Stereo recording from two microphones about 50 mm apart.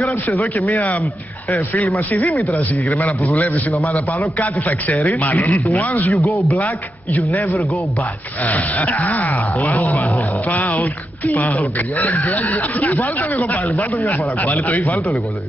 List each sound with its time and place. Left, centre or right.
1.7 s speech: left
8.5 s speech: left